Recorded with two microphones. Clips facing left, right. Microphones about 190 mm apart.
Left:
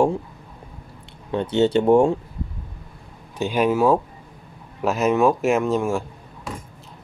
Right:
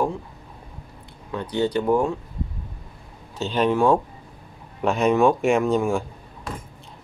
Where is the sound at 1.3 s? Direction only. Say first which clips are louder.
Left 5 dB; 25° left (ahead or behind).